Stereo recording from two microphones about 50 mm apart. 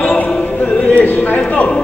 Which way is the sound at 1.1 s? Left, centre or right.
Left.